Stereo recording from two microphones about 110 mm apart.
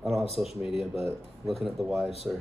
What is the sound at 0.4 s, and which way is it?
Speech, 5° right (ahead or behind).